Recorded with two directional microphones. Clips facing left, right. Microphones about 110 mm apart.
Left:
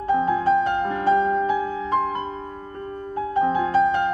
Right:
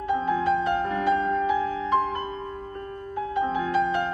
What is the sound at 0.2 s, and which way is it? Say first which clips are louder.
Music: left 4 dB; 30° left (ahead or behind).